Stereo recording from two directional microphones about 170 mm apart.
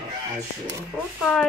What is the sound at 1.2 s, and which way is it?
Speech, 5° left (ahead or behind).